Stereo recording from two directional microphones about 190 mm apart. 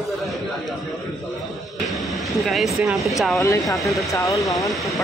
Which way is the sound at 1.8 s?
Centre (ahead or behind).